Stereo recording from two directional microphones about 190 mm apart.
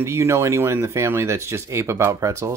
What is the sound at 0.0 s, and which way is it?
Speech, 15° right (ahead or behind).